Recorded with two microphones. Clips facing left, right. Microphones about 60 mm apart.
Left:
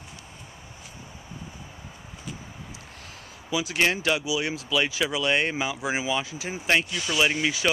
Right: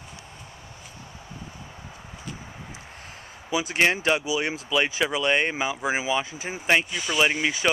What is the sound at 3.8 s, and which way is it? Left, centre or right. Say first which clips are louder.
Speech: right 2 dB; right.